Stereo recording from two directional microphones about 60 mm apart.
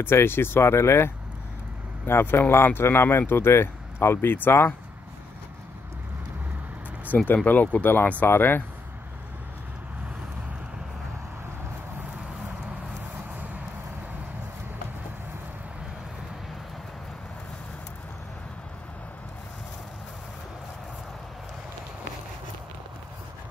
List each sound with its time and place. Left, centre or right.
0.0 s speech: left
7.4 s speech: left